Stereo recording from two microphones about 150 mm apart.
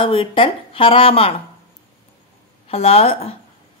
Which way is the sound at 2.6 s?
40° left (ahead or behind).